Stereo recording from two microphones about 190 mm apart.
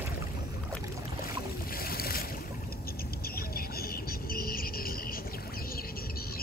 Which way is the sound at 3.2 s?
50° left (ahead or behind).